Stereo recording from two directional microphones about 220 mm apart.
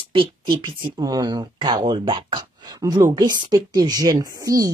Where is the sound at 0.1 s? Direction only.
20° right (ahead or behind).